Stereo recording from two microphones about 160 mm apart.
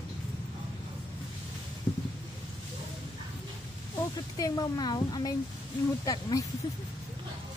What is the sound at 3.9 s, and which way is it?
Speech, 25° left (ahead or behind).